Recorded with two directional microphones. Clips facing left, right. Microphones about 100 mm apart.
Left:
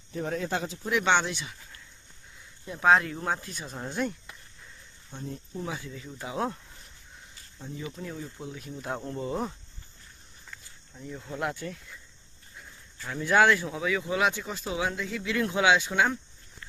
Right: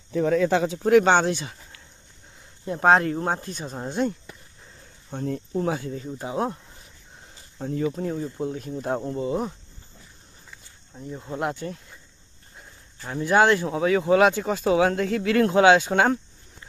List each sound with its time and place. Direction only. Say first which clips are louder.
0.5 s speech: right 10 dB; 70° right (ahead or behind)
0.9 s speech: right 8 dB; 40° right (ahead or behind)
2.6 s speech: right 4 dB; 45° right (ahead or behind); by 4.2 s 25° right (ahead or behind)
5.1 s speech: right 10 dB; 50° right (ahead or behind)
6.0 s speech: right 3 dB; 30° right (ahead or behind)
7.5 s speech: right 11 dB; 55° right (ahead or behind)
7.8 s speech: right 11 dB; 40° right (ahead or behind)
9.0 s speech: right 5 dB; 15° right (ahead or behind)
11.0 s speech: right 4 dB; 25° right (ahead or behind); by 14.5 s 50° right (ahead or behind)
14.5 s speech: right 11 dB; 70° right (ahead or behind); by 16.2 s 50° right (ahead or behind)